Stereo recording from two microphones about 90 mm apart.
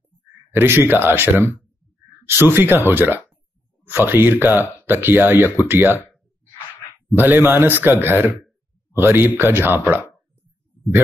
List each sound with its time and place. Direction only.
0.5 s speech: 25° right (ahead or behind)
7.2 s speech: 25° right (ahead or behind)